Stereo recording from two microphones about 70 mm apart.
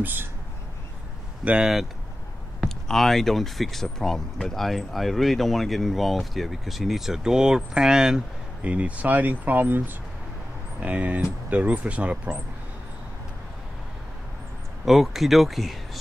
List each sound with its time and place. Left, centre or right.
0.0 s speech: right
1.4 s speech: centre
14.9 s speech: centre